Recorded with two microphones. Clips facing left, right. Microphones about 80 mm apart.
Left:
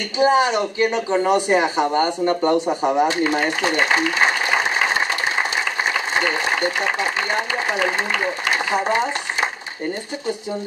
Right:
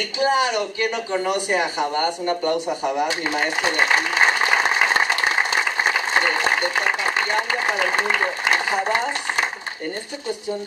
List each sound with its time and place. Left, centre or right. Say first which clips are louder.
0.2 s speech: left 4 dB; left